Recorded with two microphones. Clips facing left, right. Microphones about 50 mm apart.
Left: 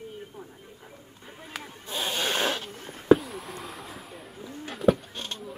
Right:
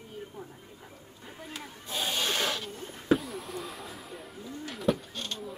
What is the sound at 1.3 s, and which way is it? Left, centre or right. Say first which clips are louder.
Speech: right 1 dB; centre.